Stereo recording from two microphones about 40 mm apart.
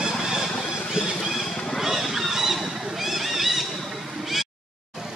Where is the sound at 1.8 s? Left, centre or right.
Centre.